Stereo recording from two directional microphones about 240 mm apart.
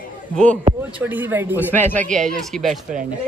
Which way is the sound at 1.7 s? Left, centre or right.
Centre.